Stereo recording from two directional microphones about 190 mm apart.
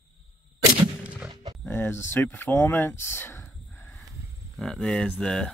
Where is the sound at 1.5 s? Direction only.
10° left (ahead or behind).